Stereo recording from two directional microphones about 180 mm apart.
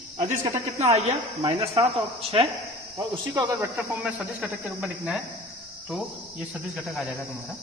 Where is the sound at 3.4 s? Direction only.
15° right (ahead or behind).